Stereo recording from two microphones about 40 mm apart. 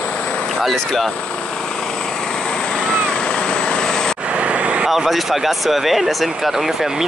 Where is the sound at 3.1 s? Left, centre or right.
Left.